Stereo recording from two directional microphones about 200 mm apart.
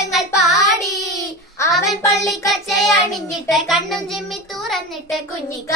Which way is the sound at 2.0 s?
Centre (ahead or behind).